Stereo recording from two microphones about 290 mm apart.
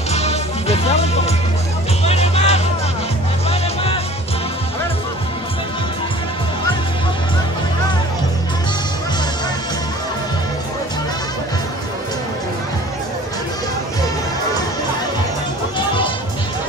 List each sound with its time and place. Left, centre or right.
0.1 s music: left